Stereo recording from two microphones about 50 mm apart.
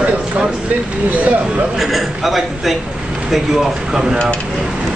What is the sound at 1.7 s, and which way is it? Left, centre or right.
A man's voice, centre.